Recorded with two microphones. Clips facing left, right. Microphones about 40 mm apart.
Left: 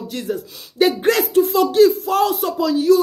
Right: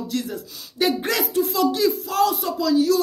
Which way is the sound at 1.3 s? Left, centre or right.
Left.